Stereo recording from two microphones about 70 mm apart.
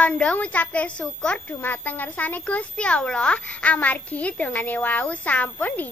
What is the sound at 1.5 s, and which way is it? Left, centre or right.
A child's voice, left.